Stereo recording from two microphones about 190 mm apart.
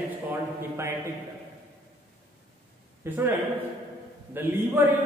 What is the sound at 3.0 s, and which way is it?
Speech, 10° right (ahead or behind).